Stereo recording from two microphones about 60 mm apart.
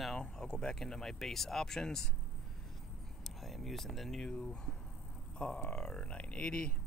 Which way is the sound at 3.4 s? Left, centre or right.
Centre.